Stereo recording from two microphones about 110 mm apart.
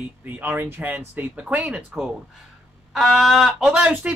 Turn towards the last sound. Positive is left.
turn(degrees=-15)  # may be behind; listen again after turning